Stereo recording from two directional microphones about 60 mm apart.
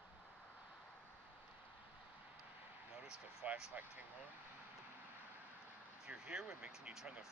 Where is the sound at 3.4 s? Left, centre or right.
Right.